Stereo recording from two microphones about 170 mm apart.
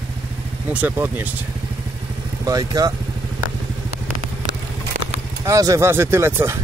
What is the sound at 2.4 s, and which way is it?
Speech, 20° right (ahead or behind).